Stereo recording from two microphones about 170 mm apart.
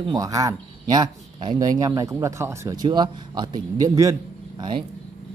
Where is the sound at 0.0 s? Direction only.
20° right (ahead or behind).